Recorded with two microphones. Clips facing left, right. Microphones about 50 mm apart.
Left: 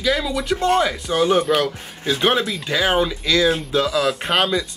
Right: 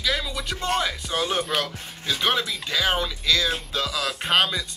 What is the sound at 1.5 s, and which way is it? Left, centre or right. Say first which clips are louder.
Speech: left 6 dB; centre.